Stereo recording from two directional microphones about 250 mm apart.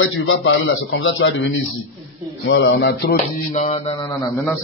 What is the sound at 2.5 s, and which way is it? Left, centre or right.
Music, left.